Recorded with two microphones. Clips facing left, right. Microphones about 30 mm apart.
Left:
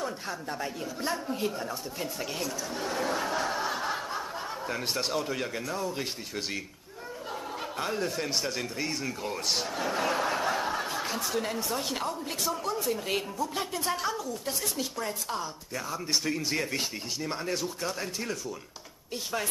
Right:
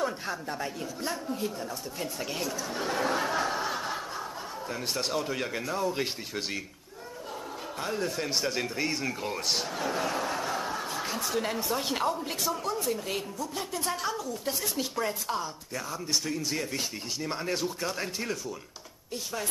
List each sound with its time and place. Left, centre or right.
0.0 s speech: centre
1.1 s a man's voice: centre
2.0 s speech: centre
7.8 s speech: centre
10.1 s snicker: centre
11.0 s speech: centre
12.4 s speech: centre
13.4 s a man's voice: centre
13.8 s speech: centre
16.1 s a man's voice: centre
17.2 s speech: centre